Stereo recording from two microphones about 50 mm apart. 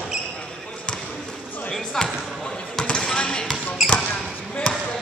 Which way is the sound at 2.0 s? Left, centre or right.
Centre.